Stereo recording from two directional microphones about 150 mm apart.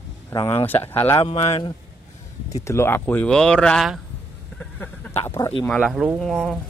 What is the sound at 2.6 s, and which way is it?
Speech, 15° left (ahead or behind).